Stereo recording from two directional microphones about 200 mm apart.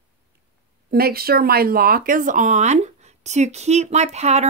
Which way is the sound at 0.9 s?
50° right (ahead or behind).